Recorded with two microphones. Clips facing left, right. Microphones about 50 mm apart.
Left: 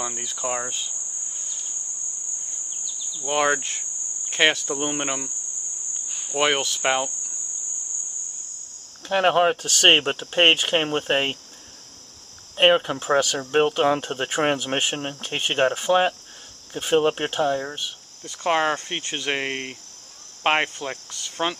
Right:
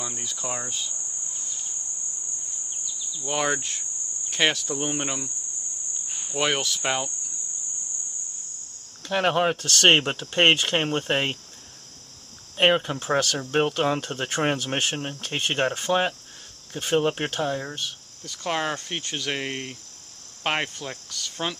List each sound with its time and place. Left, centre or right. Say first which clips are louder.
0.0 s speech: left 4 dB; left
3.2 s speech: left 4 dB; left
6.3 s speech: left 3 dB; centre
9.0 s speech: left 4 dB; centre
12.5 s speech: left 3 dB; centre